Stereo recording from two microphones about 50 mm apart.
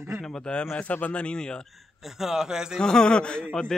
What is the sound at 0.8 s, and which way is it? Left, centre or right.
Speech, left.